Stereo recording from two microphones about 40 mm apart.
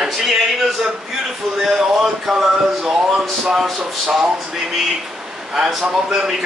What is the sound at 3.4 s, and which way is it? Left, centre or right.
Speech, centre.